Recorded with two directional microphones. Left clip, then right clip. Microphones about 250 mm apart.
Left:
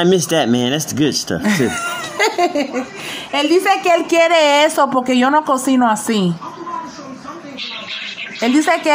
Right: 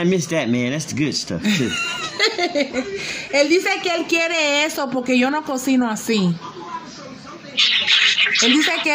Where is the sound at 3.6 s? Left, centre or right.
Centre.